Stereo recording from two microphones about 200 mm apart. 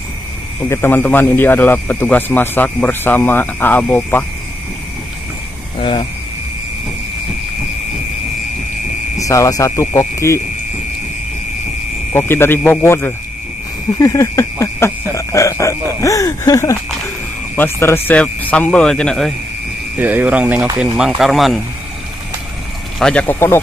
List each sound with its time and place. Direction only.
0.7 s a man's voice: 10° left (ahead or behind)
5.8 s speech: 25° left (ahead or behind)
9.2 s a man's voice: 15° left (ahead or behind)
12.1 s a man's voice: 10° left (ahead or behind)
20.0 s speech: 10° right (ahead or behind)
22.9 s a man's voice: 5° left (ahead or behind)